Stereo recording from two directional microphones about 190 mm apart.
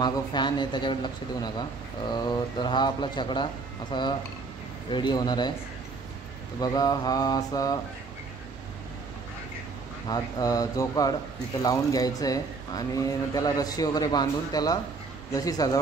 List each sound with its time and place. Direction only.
0.0 s speech: 25° left (ahead or behind)
6.6 s speech: 20° left (ahead or behind)
10.0 s speech: 20° left (ahead or behind)